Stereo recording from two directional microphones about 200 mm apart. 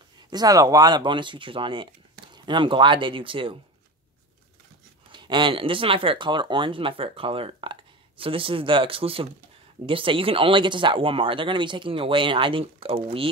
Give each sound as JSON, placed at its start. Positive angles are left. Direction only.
{"t": 0.3, "sound": "speech", "side_deg": -20}
{"t": 5.1, "sound": "speech", "side_deg": -25}